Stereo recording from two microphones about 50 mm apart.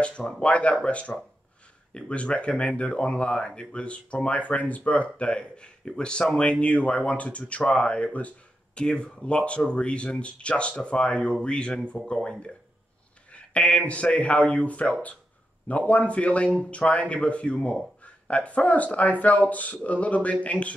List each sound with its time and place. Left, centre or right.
0.4 s speech: left
8.8 s speech: centre
13.3 s a sound: left
13.8 s speech: left